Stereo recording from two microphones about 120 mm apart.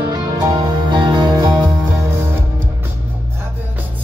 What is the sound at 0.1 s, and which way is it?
Music, 35° right (ahead or behind).